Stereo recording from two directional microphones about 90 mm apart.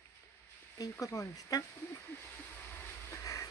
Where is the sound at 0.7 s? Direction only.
35° left (ahead or behind).